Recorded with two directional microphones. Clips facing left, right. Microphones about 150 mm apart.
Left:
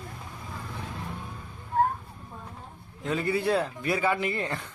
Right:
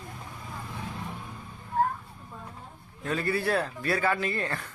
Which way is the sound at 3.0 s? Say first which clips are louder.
Left 1 dB; 20° left (ahead or behind).